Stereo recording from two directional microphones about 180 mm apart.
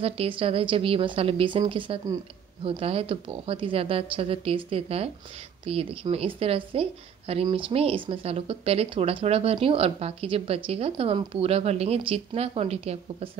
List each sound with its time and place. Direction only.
0.0 s a woman's voice: 30° right (ahead or behind)